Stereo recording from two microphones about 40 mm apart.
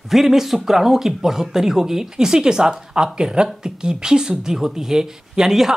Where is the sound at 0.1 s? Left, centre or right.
Centre.